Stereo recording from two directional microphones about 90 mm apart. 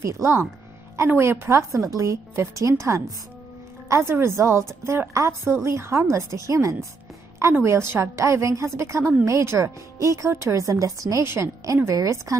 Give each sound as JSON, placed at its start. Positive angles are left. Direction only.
{"t": 0.0, "sound": "a woman's voice", "side_deg": -35}